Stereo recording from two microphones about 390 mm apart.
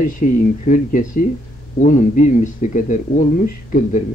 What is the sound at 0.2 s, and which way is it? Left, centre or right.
Speech, centre.